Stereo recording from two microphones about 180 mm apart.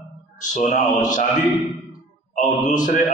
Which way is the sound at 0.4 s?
45° left (ahead or behind).